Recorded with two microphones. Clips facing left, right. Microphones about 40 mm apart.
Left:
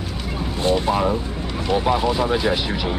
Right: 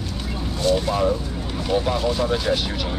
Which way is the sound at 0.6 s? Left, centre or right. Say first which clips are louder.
Left 1 dB; left.